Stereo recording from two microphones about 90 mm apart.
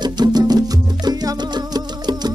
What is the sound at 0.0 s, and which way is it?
Music, 50° right (ahead or behind).